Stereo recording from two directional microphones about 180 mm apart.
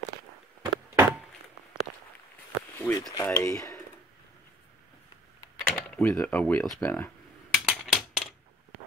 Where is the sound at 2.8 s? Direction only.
15° left (ahead or behind).